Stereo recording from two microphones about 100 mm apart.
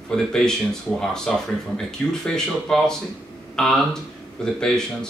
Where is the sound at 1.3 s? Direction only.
5° left (ahead or behind).